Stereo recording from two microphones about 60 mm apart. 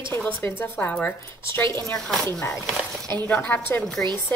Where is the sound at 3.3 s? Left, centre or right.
Left.